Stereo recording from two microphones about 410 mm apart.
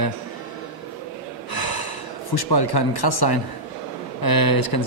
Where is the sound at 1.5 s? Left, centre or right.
Left.